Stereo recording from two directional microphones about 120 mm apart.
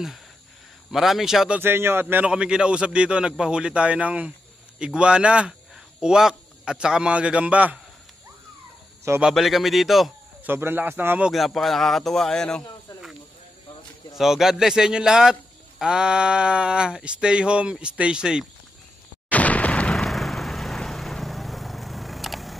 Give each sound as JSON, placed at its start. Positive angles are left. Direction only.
{"t": 0.9, "sound": "speech", "side_deg": 0}
{"t": 1.6, "sound": "a man's voice", "side_deg": -20}
{"t": 9.2, "sound": "speech", "side_deg": 0}
{"t": 10.4, "sound": "speech", "side_deg": -20}
{"t": 11.2, "sound": "speech", "side_deg": 0}
{"t": 14.1, "sound": "speech", "side_deg": -5}
{"t": 19.3, "sound": "a sound", "side_deg": 10}